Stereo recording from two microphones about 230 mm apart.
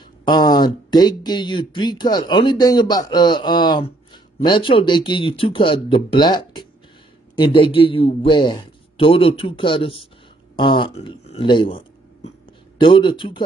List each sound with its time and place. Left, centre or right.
0.2 s speech: centre